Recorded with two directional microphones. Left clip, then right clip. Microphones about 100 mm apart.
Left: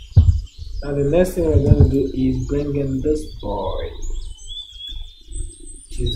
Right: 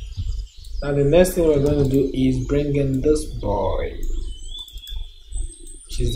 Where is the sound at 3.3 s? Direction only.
20° right (ahead or behind).